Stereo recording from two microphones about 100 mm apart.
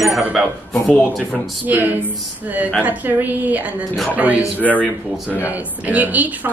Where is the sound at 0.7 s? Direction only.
15° left (ahead or behind).